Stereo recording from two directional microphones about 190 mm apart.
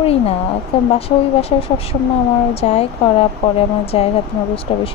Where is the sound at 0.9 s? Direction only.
30° left (ahead or behind).